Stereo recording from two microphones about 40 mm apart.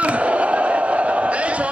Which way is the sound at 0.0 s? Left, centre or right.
Right.